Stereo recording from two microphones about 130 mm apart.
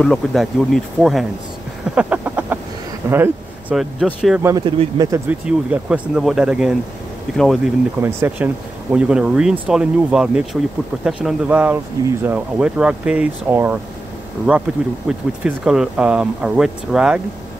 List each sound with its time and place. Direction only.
0.0 s speech: centre (ahead or behind)
2.0 s a sound: 10° right (ahead or behind)
3.1 s speech: 15° right (ahead or behind)
3.7 s speech: 5° right (ahead or behind)
4.4 s speech: 20° right (ahead or behind)
4.6 s speech: 40° right (ahead or behind)
5.1 s speech: 10° right (ahead or behind)
8.0 s speech: 20° right (ahead or behind)
15.0 s speech: 5° right (ahead or behind)